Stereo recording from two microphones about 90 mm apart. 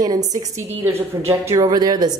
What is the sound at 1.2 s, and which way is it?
Speech, 45° right (ahead or behind).